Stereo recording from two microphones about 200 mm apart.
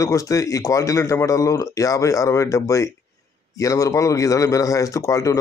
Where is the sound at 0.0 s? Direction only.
15° left (ahead or behind).